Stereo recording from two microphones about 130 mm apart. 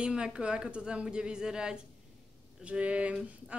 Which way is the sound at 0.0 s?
5° right (ahead or behind).